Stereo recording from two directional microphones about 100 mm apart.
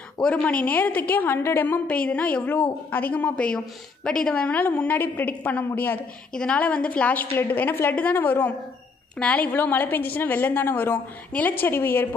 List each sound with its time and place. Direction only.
0.2 s a woman's voice: 15° left (ahead or behind)